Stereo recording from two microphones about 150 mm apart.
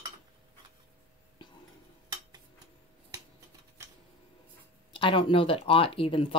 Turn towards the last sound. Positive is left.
turn(degrees=35)  # may be behind; listen again after turning